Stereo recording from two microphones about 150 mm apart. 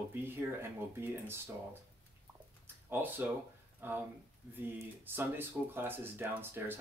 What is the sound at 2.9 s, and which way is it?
Speech, 15° right (ahead or behind).